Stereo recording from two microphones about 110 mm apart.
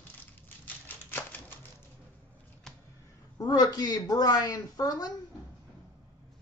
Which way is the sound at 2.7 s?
5° left (ahead or behind).